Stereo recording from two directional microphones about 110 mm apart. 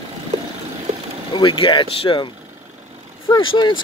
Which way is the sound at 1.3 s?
50° left (ahead or behind).